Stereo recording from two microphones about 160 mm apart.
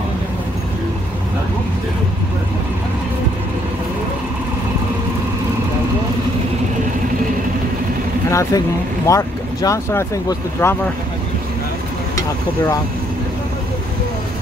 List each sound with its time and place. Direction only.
8.3 s speech: 20° left (ahead or behind)